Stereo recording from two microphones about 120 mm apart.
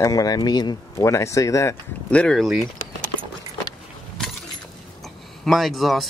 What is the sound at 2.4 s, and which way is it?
Speech, centre (ahead or behind).